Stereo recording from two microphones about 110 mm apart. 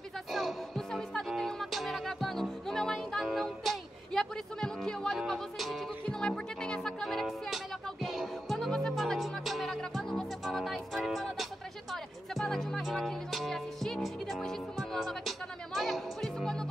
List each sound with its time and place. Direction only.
0.3 s music: centre (ahead or behind)